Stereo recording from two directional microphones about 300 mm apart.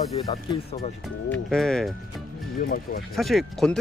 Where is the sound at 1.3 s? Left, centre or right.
Centre.